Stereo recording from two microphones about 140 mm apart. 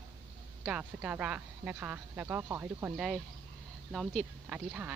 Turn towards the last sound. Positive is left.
turn(degrees=-10)  # may be behind; listen again after turning